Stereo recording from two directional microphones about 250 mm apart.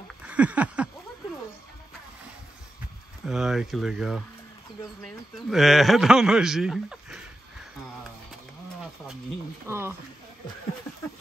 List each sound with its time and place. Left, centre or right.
0.3 s a sound: centre
3.3 s speech: centre
9.7 s speech: centre